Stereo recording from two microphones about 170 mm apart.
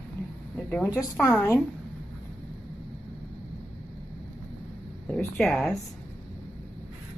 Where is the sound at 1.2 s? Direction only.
15° left (ahead or behind).